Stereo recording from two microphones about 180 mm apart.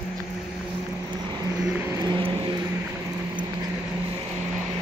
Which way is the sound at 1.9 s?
20° right (ahead or behind).